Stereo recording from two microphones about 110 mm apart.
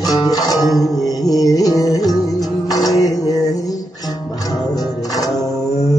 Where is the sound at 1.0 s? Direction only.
35° left (ahead or behind).